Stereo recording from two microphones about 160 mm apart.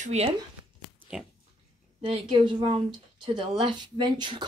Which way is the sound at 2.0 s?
40° right (ahead or behind).